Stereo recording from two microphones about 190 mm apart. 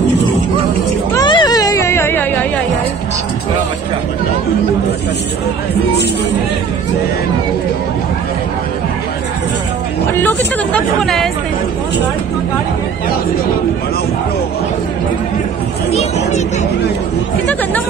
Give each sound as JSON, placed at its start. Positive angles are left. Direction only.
{"t": 1.1, "sound": "music", "side_deg": 25}
{"t": 10.1, "sound": "speech", "side_deg": 10}
{"t": 15.9, "sound": "speech", "side_deg": 35}